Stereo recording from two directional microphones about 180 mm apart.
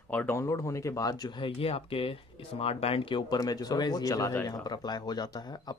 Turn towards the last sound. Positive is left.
turn(degrees=25)  # may be behind; listen again after turning